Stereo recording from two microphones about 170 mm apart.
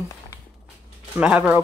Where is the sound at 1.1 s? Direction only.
5° right (ahead or behind).